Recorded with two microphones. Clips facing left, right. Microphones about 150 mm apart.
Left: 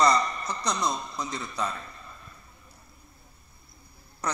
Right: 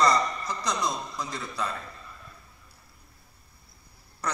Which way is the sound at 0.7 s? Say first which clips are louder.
Left 1 dB; 90° right.